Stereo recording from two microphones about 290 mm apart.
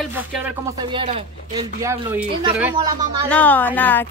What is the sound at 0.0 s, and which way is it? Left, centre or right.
Speech, centre.